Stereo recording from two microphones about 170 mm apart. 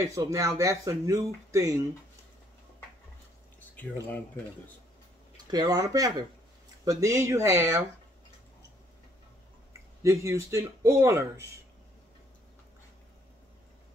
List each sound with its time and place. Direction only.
0.0 s speech: 20° right (ahead or behind)
5.5 s a man's voice: 20° right (ahead or behind)
10.0 s a man's voice: 15° right (ahead or behind)